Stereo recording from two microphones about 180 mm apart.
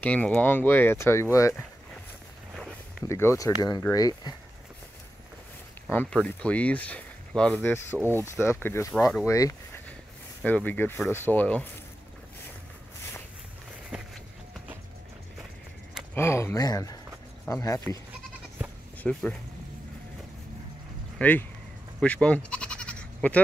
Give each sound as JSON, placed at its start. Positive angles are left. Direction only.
{"t": 0.0, "sound": "speech", "side_deg": 10}
{"t": 3.1, "sound": "speech", "side_deg": 15}
{"t": 5.9, "sound": "speech", "side_deg": 5}
{"t": 16.2, "sound": "speech", "side_deg": 15}
{"t": 19.1, "sound": "speech", "side_deg": 5}
{"t": 21.2, "sound": "speech", "side_deg": 10}
{"t": 22.0, "sound": "bleat", "side_deg": 5}